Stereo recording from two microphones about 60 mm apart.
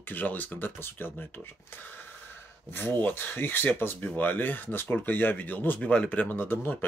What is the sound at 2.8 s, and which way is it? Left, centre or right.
Speech, left.